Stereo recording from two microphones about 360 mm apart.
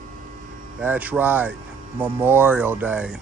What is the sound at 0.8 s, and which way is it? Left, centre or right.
Speech, centre.